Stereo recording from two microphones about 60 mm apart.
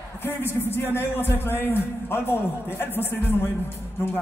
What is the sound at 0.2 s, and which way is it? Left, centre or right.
A man's voice, left.